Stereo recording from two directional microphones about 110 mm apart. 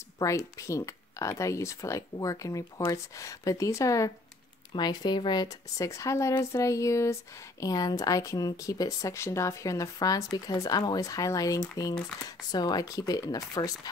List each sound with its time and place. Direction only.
0.2 s speech: 30° left (ahead or behind)
4.7 s speech: 40° left (ahead or behind)
5.9 s speech: 25° left (ahead or behind)